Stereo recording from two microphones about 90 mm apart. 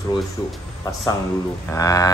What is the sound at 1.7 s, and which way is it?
Speech, 40° left (ahead or behind).